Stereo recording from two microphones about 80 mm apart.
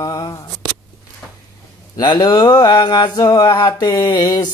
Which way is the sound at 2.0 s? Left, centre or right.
Left.